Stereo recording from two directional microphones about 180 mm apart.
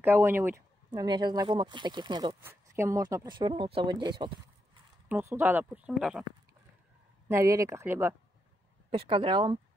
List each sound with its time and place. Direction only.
0.0 s speech: 10° right (ahead or behind)
0.9 s speech: 25° right (ahead or behind)
2.4 s speech: 15° right (ahead or behind)
5.0 s speech: 10° right (ahead or behind)
7.2 s speech: 15° right (ahead or behind)
8.9 s speech: 30° right (ahead or behind)